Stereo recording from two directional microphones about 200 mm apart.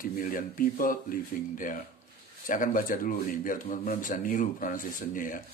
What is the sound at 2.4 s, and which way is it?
Speech, 40° left (ahead or behind).